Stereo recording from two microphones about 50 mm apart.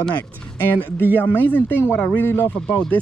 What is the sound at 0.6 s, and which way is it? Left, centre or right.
Speech, left.